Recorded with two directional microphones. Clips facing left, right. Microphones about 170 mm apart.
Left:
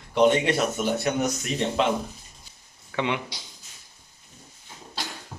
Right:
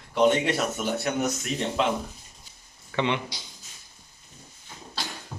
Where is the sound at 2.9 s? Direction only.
5° left (ahead or behind).